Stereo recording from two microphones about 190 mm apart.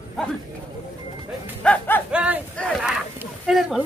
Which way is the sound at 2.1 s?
5° right (ahead or behind).